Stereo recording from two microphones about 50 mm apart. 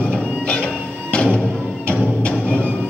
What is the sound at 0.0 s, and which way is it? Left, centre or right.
Music, centre.